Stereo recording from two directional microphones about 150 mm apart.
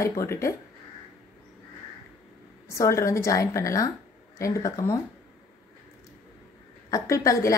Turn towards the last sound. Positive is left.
turn(degrees=20)  # may be behind; listen again after turning